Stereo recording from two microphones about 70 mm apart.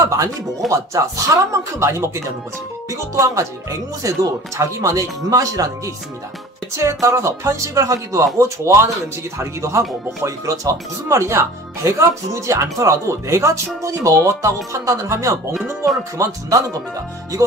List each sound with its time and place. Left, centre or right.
0.0 s music: right
0.7 s speech: right
6.8 s speech: right